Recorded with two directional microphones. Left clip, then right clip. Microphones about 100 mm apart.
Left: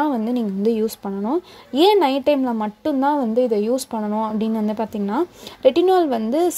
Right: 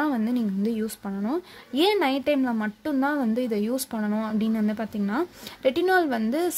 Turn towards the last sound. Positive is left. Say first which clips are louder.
# left 6 dB
turn(degrees=20)  # may be behind; listen again after turning